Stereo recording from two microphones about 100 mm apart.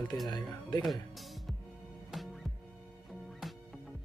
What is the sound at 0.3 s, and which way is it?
Speech, 45° left (ahead or behind).